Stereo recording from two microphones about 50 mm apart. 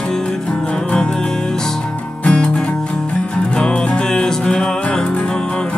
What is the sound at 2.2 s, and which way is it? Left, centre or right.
Music, centre.